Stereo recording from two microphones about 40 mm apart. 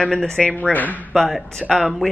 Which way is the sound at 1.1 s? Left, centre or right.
Centre.